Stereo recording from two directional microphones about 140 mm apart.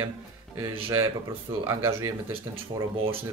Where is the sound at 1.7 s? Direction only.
20° right (ahead or behind).